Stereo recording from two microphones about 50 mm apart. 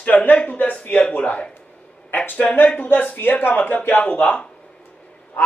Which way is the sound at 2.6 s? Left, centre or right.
Left.